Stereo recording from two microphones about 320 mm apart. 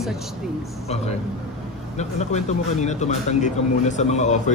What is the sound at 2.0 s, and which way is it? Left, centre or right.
A man's voice, left.